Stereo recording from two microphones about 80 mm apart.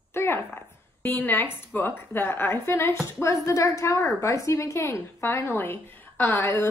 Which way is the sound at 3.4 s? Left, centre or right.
Left.